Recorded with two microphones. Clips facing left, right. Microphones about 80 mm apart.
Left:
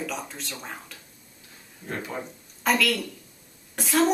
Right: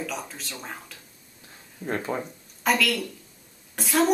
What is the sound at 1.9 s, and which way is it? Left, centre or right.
Speech, right.